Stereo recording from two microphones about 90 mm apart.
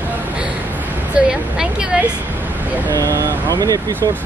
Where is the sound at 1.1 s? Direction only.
10° right (ahead or behind).